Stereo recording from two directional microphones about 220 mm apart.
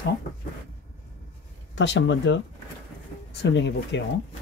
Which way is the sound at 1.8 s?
55° left (ahead or behind).